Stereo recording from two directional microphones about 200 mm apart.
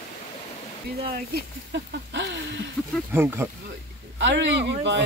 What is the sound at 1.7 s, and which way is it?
Speech, 60° right (ahead or behind).